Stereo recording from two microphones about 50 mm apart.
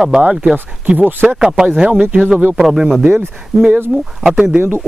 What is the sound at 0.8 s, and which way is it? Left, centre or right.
Speech, right.